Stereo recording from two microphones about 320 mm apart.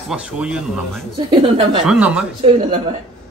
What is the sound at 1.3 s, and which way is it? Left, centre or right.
Speech, centre.